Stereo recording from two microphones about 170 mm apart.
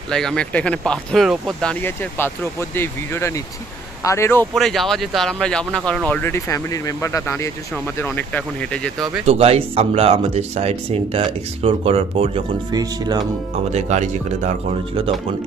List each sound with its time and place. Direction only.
0.1 s speech: 5° left (ahead or behind)
4.6 s speech: centre (ahead or behind)
9.2 s speech: 35° right (ahead or behind)
13.7 s speech: 45° right (ahead or behind)